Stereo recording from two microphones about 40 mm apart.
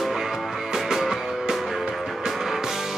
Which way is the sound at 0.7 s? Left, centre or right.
Centre.